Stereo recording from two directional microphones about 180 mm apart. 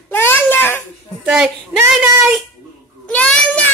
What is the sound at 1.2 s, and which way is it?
Speech, centre (ahead or behind).